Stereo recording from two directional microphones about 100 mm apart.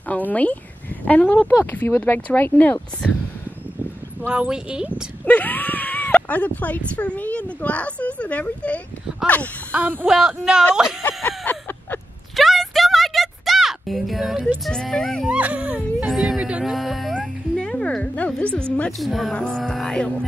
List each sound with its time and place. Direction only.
0.1 s speech: 15° left (ahead or behind)
1.5 s speech: 30° left (ahead or behind)
4.3 s speech: 10° right (ahead or behind)
5.2 s a sound: 15° left (ahead or behind)
7.0 s speech: 15° left (ahead or behind)
9.7 s speech: 20° right (ahead or behind)
10.0 s speech: 5° right (ahead or behind)
11.2 s a sound: 20° left (ahead or behind)
12.4 s music: centre (ahead or behind)
14.6 s speech: 5° left (ahead or behind)
15.2 s speech: 15° right (ahead or behind)
16.7 s music: centre (ahead or behind)
17.6 s a woman's voice: 10° left (ahead or behind)